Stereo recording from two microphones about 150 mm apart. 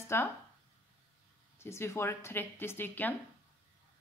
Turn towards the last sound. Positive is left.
turn(degrees=10)  # may be behind; listen again after turning